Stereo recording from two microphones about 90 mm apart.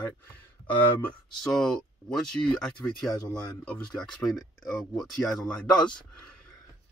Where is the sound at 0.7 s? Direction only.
15° left (ahead or behind).